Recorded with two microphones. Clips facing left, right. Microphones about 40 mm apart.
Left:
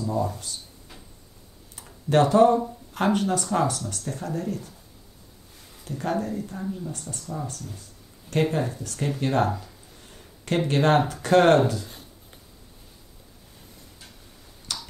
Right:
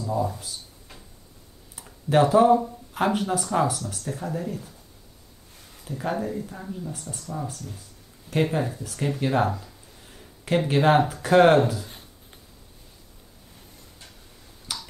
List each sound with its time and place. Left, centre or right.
0.0 s a sound: centre
1.8 s speech: centre
5.9 s speech: centre
14.7 s tick-tock: centre